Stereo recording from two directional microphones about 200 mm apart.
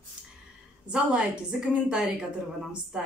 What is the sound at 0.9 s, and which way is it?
Speech, 5° right (ahead or behind).